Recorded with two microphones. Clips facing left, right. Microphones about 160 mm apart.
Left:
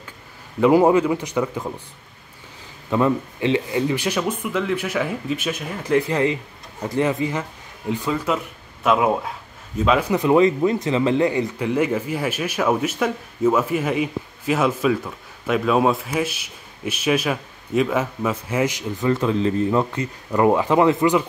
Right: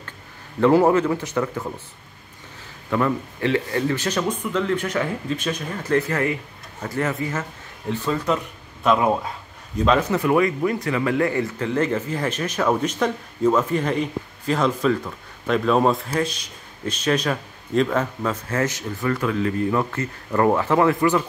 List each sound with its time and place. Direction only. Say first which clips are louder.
0.6 s speech: left 1 dB; 15° left (ahead or behind)
2.9 s speech: left 3 dB; 15° left (ahead or behind)